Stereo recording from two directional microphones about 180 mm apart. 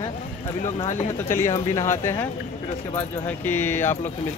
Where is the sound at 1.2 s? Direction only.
15° left (ahead or behind).